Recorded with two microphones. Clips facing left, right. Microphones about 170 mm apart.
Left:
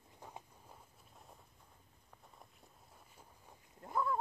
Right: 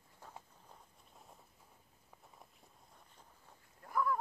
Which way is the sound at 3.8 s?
25° left (ahead or behind).